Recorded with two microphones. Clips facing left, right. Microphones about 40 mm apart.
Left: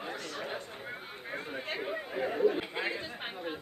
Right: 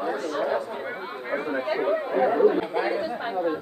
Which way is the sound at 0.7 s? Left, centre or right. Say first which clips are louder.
Right 11 dB; right.